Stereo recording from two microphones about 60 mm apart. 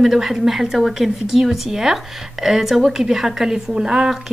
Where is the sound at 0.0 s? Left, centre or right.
Centre.